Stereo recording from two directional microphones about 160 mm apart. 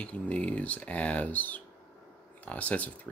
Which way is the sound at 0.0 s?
5° left (ahead or behind).